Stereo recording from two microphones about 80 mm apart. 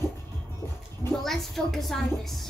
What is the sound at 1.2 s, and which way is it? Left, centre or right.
A woman's voice, centre.